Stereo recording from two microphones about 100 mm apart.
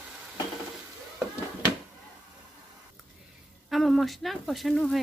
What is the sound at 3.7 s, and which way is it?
Speech, centre (ahead or behind).